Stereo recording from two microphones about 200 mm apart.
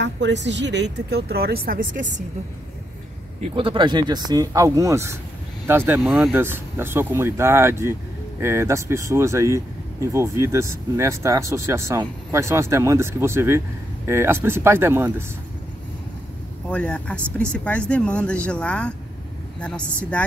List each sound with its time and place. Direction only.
0.0 s speech: 60° right (ahead or behind); by 2.2 s 40° right (ahead or behind)
3.3 s speech: 30° right (ahead or behind); by 15.2 s 10° right (ahead or behind)
16.6 s speech: 5° left (ahead or behind)